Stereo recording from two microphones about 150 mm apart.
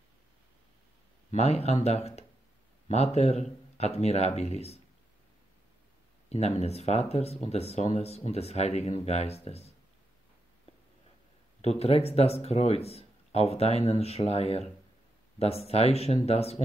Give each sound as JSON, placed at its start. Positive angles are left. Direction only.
{"t": 1.3, "sound": "speech", "side_deg": 45}
{"t": 6.2, "sound": "speech", "side_deg": 45}
{"t": 11.6, "sound": "speech", "side_deg": 40}